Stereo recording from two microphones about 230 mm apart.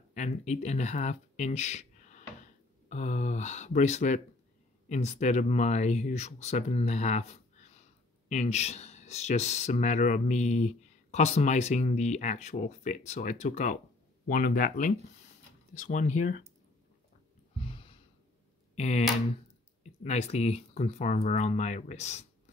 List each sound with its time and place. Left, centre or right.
0.1 s speech: left
17.6 s sigh: left
18.8 s speech: left